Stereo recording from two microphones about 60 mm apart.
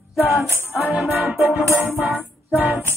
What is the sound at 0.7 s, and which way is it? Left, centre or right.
Music, right.